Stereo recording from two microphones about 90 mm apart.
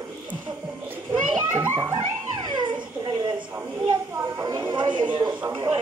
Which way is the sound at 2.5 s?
60° right (ahead or behind).